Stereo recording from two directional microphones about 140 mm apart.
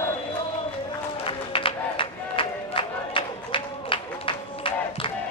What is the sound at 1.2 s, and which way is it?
Music, 40° left (ahead or behind).